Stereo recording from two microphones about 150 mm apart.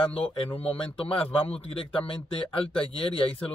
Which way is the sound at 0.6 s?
40° left (ahead or behind).